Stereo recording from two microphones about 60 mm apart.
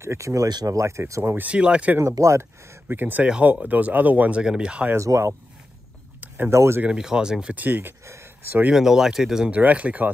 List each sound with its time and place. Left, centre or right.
0.0 s speech: right
1.5 s speech: centre
2.0 s speech: right
2.9 s speech: right
4.9 s speech: right
6.2 s a sound: right
6.5 s speech: right
6.9 s speech: centre
7.5 s speech: right
8.0 s a sound: right
8.7 s speech: centre
9.5 s speech: right